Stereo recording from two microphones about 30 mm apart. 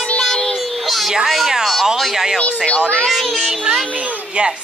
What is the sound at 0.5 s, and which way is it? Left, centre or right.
Child singing, centre.